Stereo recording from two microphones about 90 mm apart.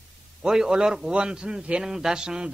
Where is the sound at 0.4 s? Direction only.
5° right (ahead or behind).